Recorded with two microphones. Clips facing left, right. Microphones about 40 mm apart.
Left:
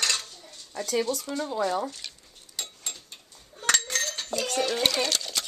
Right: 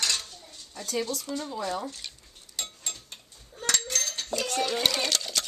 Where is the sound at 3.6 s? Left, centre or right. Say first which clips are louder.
Left 3 dB; left.